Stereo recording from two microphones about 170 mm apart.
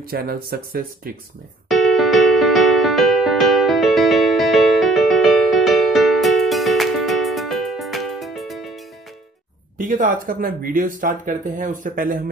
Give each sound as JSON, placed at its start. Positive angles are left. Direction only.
{"t": 0.0, "sound": "speech", "side_deg": -60}
{"t": 1.7, "sound": "music", "side_deg": 0}
{"t": 9.8, "sound": "speech", "side_deg": -50}